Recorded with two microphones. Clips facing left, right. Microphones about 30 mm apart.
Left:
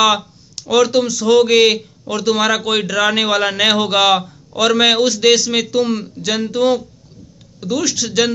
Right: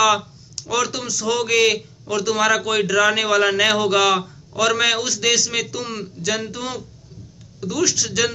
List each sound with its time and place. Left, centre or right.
0.7 s a man's voice: left
1.0 s a man's voice: left
1.3 s a man's voice: left